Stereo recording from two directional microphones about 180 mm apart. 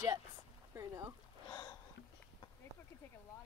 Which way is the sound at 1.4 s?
15° left (ahead or behind).